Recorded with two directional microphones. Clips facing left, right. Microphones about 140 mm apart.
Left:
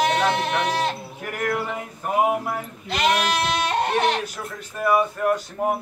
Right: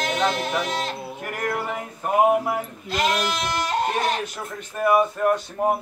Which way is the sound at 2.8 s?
70° left (ahead or behind).